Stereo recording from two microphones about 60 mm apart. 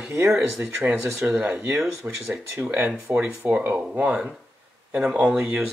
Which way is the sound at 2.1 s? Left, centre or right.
Right.